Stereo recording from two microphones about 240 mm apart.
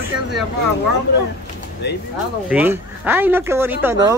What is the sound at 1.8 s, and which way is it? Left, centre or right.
Speech, left.